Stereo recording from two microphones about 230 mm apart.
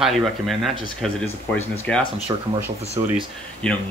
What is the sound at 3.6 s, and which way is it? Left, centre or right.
Speech, centre.